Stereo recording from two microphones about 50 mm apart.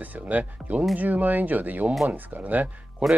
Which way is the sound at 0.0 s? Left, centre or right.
Right.